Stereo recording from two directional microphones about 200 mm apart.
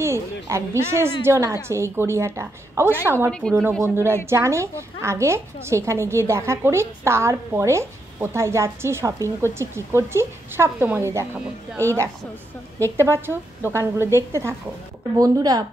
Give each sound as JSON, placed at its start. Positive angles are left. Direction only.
{"t": 0.0, "sound": "a woman's voice", "side_deg": -15}
{"t": 3.3, "sound": "speech", "side_deg": 5}
{"t": 3.8, "sound": "a woman's voice", "side_deg": -10}